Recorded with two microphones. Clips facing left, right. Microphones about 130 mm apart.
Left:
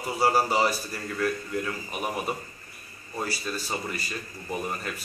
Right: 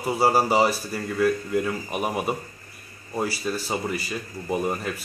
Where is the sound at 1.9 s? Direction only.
40° right (ahead or behind).